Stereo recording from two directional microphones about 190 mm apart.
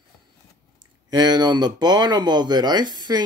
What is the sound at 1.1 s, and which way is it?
Speech, 20° right (ahead or behind).